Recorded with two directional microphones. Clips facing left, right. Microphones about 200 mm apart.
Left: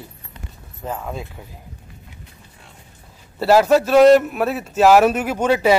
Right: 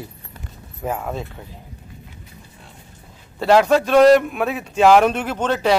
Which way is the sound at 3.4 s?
5° left (ahead or behind).